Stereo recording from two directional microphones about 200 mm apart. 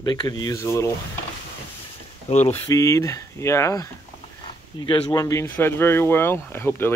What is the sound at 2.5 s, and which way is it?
Speech, 15° left (ahead or behind).